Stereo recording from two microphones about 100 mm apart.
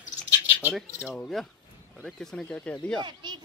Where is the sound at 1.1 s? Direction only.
Centre (ahead or behind).